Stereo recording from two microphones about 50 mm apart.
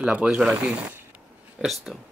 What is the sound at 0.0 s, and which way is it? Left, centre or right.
Speech, right.